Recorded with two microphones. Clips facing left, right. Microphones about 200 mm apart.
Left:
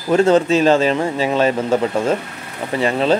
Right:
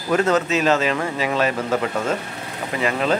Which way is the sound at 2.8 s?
30° left (ahead or behind).